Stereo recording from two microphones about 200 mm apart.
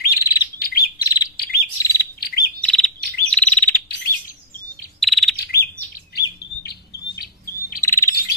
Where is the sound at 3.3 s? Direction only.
5° left (ahead or behind).